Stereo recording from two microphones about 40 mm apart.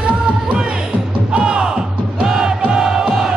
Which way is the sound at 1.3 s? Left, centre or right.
Right.